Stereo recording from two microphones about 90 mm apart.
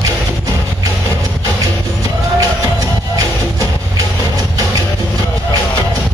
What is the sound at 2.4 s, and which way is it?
Music, 40° right (ahead or behind).